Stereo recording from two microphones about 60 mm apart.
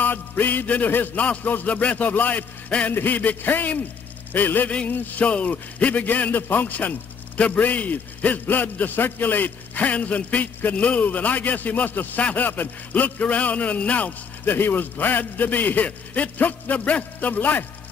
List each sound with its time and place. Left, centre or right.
0.0 s a man's voice: left